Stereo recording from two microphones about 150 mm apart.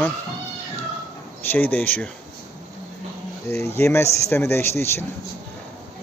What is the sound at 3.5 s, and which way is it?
Speech, 15° left (ahead or behind).